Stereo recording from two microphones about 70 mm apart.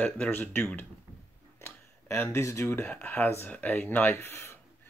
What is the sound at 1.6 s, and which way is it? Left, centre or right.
Tick-tock, left.